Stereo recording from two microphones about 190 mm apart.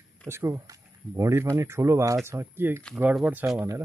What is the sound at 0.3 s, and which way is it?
Speech, 15° right (ahead or behind).